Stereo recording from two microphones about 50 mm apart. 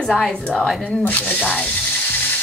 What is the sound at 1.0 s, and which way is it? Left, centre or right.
Speech, left.